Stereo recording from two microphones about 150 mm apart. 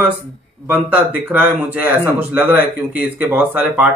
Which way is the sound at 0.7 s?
10° right (ahead or behind).